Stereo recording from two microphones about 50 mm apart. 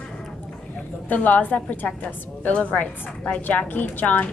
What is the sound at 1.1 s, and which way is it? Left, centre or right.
A woman's voice, left.